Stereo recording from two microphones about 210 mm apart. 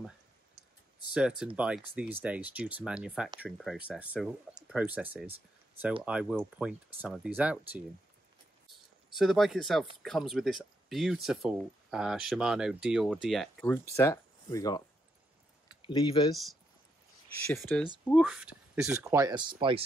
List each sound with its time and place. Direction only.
1.1 s speech: 5° right (ahead or behind)
9.1 s speech: centre (ahead or behind); by 14.8 s 15° left (ahead or behind)
15.8 s speech: 20° left (ahead or behind)
17.7 s speech: 5° left (ahead or behind); by 19.8 s 25° right (ahead or behind)